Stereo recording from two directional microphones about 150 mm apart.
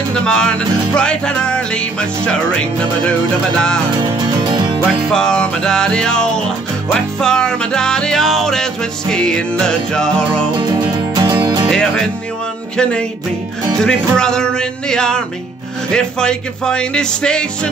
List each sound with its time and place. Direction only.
0.1 s music: 5° left (ahead or behind)
4.0 s music: 30° right (ahead or behind)
5.1 s music: 5° left (ahead or behind)
10.6 s music: 25° right (ahead or behind)
11.7 s music: 5° left (ahead or behind)
13.8 s music: 5° left (ahead or behind)